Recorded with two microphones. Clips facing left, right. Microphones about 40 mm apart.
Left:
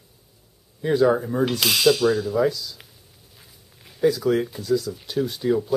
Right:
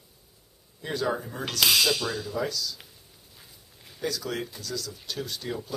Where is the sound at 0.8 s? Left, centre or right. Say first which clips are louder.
Left 10 dB; centre.